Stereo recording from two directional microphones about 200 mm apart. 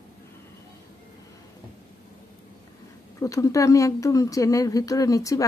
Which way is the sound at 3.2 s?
15° left (ahead or behind).